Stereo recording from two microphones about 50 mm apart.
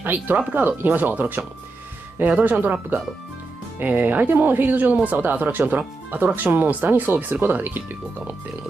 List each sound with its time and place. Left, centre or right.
0.0 s speech: right